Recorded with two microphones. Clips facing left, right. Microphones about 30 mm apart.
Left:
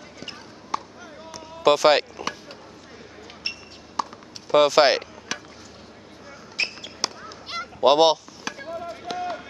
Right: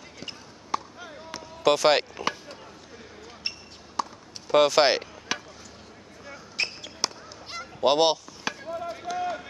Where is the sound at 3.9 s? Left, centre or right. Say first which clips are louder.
Left 2 dB; centre.